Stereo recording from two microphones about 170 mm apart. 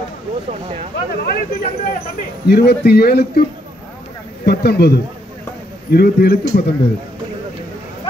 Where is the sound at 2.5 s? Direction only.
70° left (ahead or behind).